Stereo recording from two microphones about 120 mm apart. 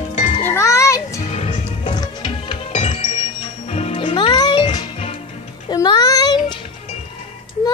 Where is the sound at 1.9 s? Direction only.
35° left (ahead or behind).